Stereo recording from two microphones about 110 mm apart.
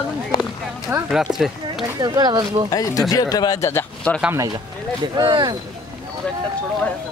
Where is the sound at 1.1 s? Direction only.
5° right (ahead or behind).